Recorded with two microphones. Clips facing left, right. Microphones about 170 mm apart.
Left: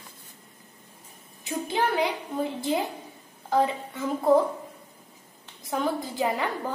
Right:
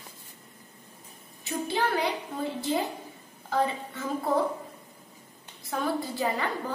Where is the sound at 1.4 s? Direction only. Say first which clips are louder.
Left 1 dB; 15° left (ahead or behind).